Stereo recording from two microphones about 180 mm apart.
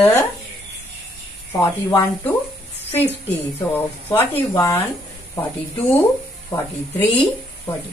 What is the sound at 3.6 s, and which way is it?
Speech, 10° left (ahead or behind).